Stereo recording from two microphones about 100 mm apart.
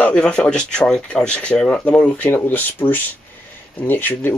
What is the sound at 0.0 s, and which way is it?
Speech, 10° left (ahead or behind).